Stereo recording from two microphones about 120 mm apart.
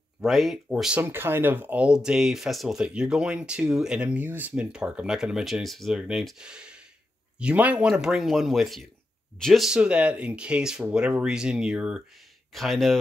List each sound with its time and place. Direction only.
0.2 s speech: centre (ahead or behind)
1.0 s speech: 20° right (ahead or behind); by 13.0 s centre (ahead or behind)